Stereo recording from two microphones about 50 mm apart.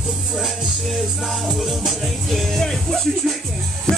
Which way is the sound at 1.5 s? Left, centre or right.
Centre.